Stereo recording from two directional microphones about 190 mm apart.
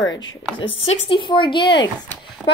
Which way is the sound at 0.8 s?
25° left (ahead or behind).